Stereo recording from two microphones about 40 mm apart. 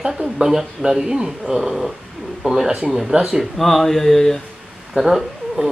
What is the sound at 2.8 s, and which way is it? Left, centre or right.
Speech, centre.